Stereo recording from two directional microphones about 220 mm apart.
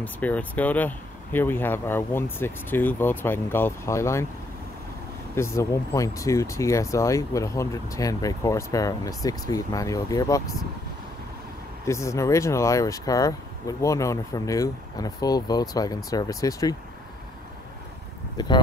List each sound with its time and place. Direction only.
0.0 s speech: 5° left (ahead or behind)
5.3 s speech: 10° left (ahead or behind)
11.8 s speech: 15° left (ahead or behind)
18.4 s speech: 20° left (ahead or behind)